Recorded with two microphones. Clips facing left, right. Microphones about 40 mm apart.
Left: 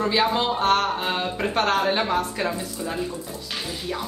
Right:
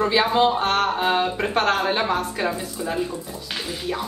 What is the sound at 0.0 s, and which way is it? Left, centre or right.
Speech, centre.